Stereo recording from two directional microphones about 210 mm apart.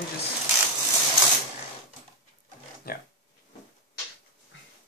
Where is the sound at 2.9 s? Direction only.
45° left (ahead or behind).